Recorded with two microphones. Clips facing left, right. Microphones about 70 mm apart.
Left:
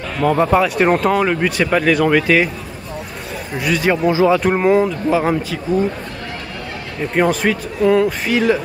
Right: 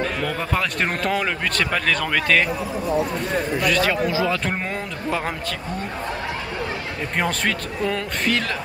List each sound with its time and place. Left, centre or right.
0.2 s speech: left
0.6 s speech: centre
3.5 s speech: centre
3.9 s speech: left
4.4 s speech: centre
7.2 s speech: centre